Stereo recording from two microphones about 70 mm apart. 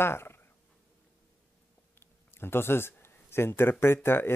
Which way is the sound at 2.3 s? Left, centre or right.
Left.